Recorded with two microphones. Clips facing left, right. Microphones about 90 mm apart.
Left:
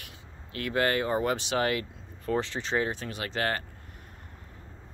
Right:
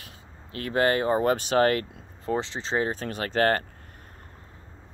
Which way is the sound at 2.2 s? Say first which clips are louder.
Right 1 dB; 25° right (ahead or behind).